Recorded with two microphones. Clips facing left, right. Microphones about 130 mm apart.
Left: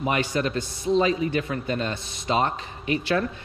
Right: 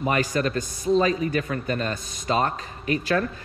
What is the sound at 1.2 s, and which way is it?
A man's voice, 45° right (ahead or behind).